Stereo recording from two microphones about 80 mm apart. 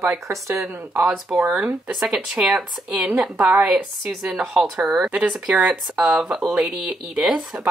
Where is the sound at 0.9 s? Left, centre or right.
Right.